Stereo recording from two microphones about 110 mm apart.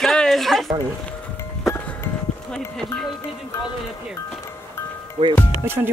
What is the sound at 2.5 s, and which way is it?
Speech, 5° left (ahead or behind).